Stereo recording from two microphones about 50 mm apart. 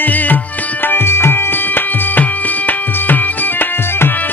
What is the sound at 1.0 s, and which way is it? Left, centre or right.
Tabla, left.